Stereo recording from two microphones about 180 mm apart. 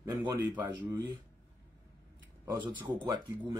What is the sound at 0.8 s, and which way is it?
Speech, 20° right (ahead or behind).